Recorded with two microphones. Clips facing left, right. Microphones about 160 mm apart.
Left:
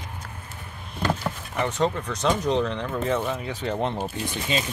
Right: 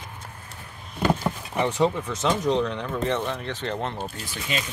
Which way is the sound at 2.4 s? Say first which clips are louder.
Even; centre (ahead or behind).